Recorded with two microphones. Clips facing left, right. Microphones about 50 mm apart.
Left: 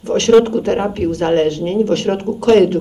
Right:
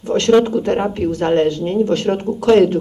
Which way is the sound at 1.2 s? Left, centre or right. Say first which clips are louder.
Left 1 dB; centre.